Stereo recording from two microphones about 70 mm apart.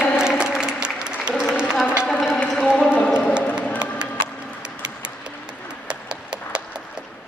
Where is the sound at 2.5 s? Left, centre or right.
Centre.